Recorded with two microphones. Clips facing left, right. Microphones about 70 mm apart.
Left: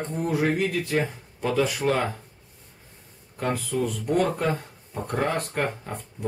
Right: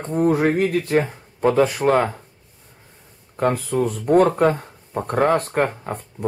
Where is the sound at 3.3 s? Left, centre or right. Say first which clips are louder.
Right 7 dB; right.